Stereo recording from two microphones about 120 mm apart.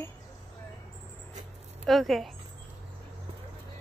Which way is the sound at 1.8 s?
Centre (ahead or behind).